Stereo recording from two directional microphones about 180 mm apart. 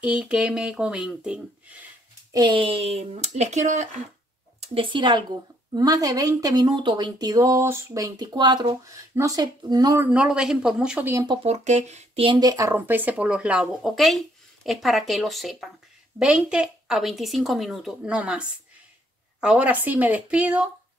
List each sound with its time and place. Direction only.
0.0 s a woman's voice: 5° right (ahead or behind)
2.3 s speech: 25° right (ahead or behind)
4.6 s a woman's voice: 30° right (ahead or behind)
10.0 s a woman's voice: 5° right (ahead or behind)
11.2 s a woman's voice: 35° right (ahead or behind); by 18.4 s 5° right (ahead or behind)
19.4 s speech: 5° right (ahead or behind)